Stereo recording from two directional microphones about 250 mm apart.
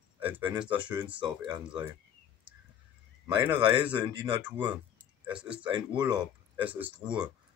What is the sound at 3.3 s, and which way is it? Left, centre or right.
Speech, centre.